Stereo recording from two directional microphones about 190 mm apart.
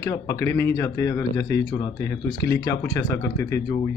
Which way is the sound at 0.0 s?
15° left (ahead or behind).